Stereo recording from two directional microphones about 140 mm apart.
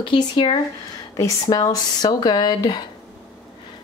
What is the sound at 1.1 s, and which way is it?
Speech, 25° left (ahead or behind).